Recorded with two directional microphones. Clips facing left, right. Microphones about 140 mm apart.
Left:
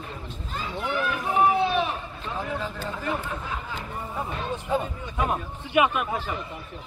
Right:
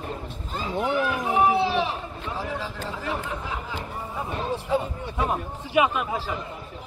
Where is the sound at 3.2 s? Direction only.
15° right (ahead or behind).